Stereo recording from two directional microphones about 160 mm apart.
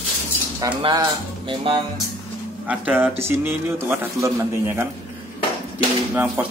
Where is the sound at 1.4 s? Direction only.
30° right (ahead or behind).